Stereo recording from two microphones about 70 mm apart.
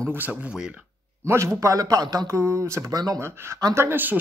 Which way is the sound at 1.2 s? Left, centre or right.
Right.